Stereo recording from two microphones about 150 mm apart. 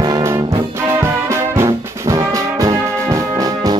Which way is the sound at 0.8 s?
20° right (ahead or behind).